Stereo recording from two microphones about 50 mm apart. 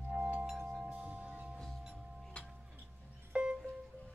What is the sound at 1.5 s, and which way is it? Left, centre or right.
Singing bowl, centre.